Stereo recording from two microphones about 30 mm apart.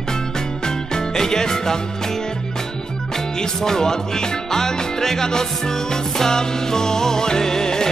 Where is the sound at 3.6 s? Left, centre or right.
Centre.